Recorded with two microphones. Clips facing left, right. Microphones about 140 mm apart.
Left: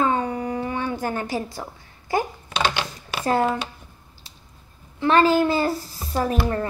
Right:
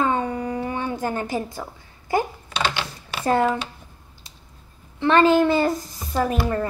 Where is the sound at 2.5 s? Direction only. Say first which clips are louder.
Left 2 dB; 55° left (ahead or behind).